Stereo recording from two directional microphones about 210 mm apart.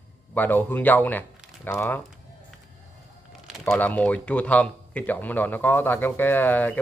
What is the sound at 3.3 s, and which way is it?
Speech, centre (ahead or behind).